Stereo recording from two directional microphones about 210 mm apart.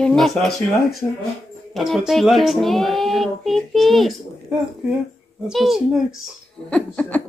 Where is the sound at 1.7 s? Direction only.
Centre (ahead or behind).